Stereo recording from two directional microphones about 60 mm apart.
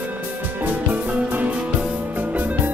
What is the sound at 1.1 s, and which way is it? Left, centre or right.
Music, right.